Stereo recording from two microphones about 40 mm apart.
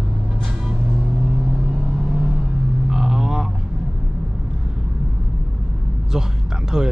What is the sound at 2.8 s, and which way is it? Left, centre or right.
Vehicle, centre.